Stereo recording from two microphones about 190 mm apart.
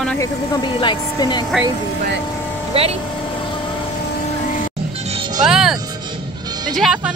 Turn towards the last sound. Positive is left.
turn(degrees=0)  # may be behind; listen again after turning